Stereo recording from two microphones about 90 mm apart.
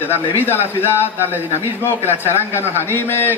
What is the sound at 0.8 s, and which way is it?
Speech, 25° left (ahead or behind).